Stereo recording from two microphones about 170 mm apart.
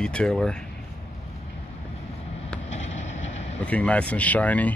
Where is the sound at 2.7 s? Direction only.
40° left (ahead or behind).